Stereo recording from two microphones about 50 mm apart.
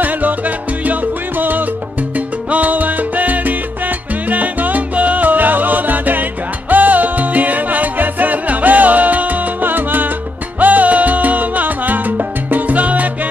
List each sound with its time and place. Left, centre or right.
0.0 s music: right
2.1 s salsa music: right
6.7 s music: right
10.6 s salsa music: right